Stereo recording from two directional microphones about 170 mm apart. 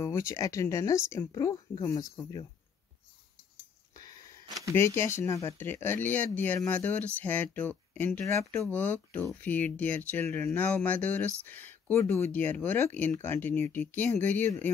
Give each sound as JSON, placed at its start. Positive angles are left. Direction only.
{"t": 0.0, "sound": "speech", "side_deg": 15}
{"t": 4.7, "sound": "speech", "side_deg": 15}